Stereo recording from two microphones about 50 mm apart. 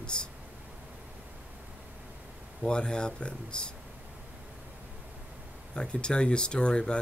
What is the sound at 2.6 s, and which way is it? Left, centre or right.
Speech, centre.